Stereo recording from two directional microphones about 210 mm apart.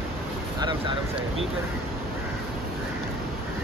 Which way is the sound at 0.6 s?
20° right (ahead or behind).